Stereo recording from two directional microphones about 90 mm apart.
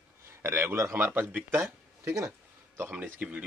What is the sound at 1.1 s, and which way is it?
Speech, 15° right (ahead or behind).